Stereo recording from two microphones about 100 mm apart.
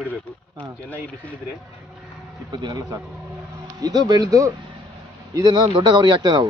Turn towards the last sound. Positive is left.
turn(degrees=-45)  # may be behind; listen again after turning